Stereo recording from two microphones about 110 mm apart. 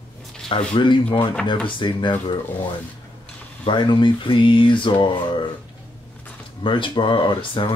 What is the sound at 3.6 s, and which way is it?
Speech, 45° left (ahead or behind).